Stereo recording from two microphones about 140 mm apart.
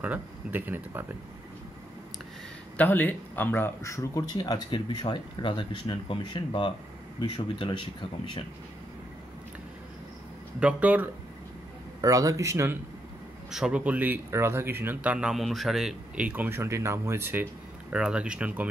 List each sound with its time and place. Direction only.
0.0 s speech: 10° right (ahead or behind)
2.8 s speech: 10° left (ahead or behind); by 7.7 s 35° left (ahead or behind)
10.6 s speech: 10° right (ahead or behind)
12.0 s speech: 25° right (ahead or behind)
13.5 s speech: 5° right (ahead or behind)